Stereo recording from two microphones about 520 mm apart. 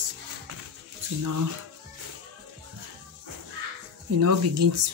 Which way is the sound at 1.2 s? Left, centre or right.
Right.